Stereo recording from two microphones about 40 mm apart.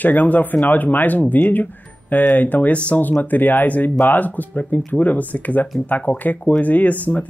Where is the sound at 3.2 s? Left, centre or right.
Left.